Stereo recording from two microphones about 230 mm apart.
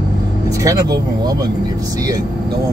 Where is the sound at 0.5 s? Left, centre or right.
Centre.